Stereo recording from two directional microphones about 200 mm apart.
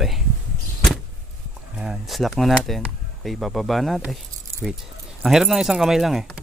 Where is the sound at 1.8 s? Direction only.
Centre (ahead or behind).